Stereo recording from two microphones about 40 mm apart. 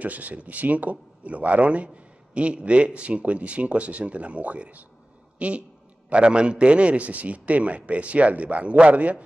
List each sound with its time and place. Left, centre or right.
0.0 s speech: right